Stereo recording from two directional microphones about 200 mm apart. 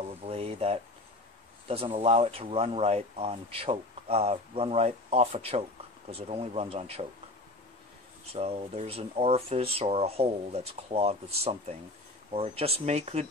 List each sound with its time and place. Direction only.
0.3 s speech: 30° right (ahead or behind)
8.3 s speech: 30° right (ahead or behind)